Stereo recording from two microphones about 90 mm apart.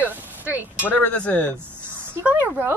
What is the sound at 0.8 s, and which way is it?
Speech, 20° left (ahead or behind).